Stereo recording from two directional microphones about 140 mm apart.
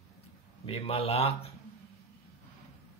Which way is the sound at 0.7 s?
45° left (ahead or behind).